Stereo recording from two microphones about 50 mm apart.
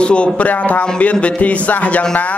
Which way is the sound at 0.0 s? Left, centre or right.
Left.